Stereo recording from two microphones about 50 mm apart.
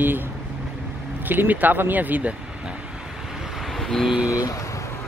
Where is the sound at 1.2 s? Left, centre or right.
Right.